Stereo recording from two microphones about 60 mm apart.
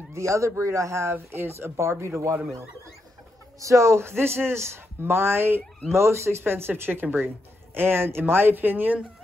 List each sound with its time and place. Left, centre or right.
0.1 s speech: right
1.1 s a man's voice: right
3.5 s a man's voice: right